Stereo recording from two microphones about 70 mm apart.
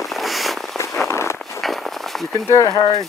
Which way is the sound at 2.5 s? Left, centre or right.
Left.